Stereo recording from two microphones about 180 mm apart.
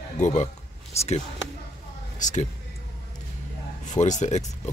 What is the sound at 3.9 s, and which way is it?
Speech, 40° left (ahead or behind).